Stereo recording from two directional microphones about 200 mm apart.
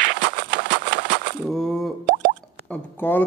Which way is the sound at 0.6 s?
45° right (ahead or behind).